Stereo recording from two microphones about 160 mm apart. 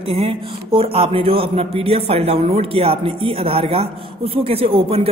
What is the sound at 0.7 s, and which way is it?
A woman's voice, 35° right (ahead or behind).